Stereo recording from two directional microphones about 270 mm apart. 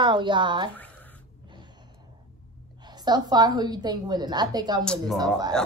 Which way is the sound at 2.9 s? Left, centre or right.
Centre.